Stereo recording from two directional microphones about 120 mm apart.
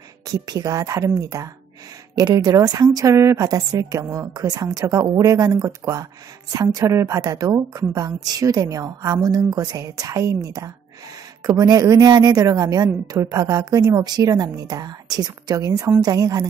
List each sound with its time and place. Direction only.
0.3 s a woman's voice: 30° right (ahead or behind)